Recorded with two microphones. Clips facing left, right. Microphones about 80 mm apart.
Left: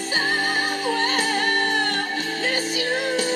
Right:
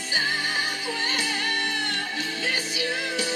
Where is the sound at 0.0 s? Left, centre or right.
Left.